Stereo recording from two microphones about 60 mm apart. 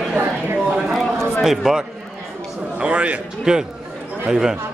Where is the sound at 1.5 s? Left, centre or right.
Centre.